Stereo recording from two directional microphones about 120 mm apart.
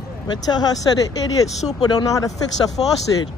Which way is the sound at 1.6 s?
5° left (ahead or behind).